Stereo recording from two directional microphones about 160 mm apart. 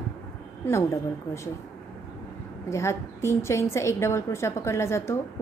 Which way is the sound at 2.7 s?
15° left (ahead or behind).